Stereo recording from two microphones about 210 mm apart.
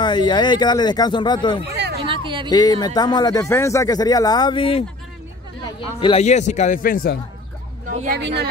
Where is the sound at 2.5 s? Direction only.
20° left (ahead or behind).